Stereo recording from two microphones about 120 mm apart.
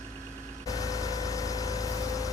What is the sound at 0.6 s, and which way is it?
Vehicle, 30° left (ahead or behind).